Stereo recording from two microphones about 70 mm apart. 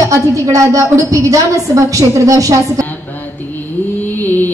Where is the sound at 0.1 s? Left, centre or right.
Right.